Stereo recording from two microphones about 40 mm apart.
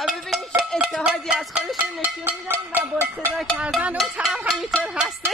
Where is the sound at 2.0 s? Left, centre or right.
Right.